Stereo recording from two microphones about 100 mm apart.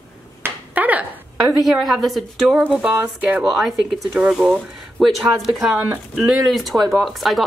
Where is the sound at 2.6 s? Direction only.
15° right (ahead or behind).